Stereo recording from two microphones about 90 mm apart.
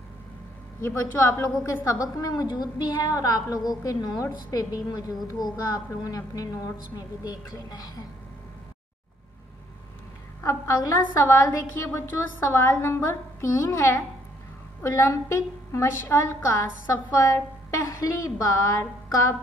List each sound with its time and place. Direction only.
0.8 s a woman's voice: 25° left (ahead or behind)
2.0 s a woman's voice: 45° left (ahead or behind)
10.4 s a woman's voice: 35° left (ahead or behind)